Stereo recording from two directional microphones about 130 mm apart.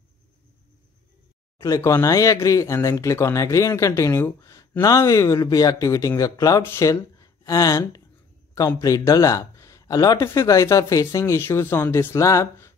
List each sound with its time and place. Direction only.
1.6 s speech: 25° left (ahead or behind)